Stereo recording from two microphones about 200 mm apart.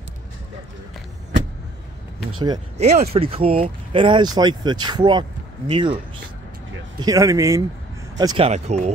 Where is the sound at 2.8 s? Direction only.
35° right (ahead or behind).